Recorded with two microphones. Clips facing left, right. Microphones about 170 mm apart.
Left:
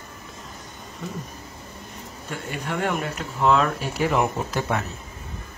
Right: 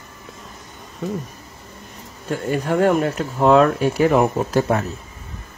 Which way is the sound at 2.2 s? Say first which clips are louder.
Right 10 dB; 40° right (ahead or behind).